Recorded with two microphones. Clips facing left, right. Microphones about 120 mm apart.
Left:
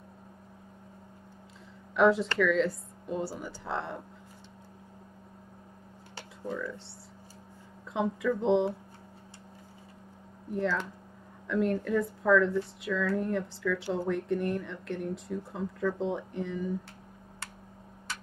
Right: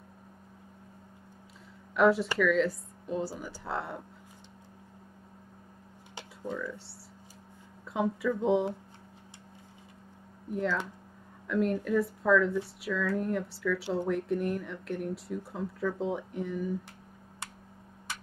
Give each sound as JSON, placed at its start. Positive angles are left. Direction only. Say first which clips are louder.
{"t": 2.0, "sound": "speech", "louder": "left 1 dB", "side_deg": 0}
{"t": 6.5, "sound": "speech", "louder": "left 1 dB", "side_deg": -20}
{"t": 7.9, "sound": "speech", "louder": "even", "side_deg": -5}
{"t": 11.4, "sound": "speech", "louder": "even", "side_deg": -5}